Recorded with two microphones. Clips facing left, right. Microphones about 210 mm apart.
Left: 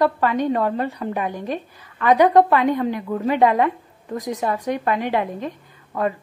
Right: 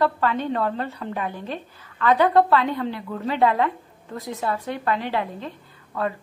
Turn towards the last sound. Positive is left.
turn(degrees=15)  # may be behind; listen again after turning